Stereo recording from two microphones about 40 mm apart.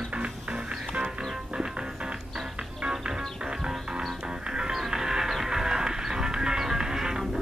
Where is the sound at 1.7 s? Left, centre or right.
Centre.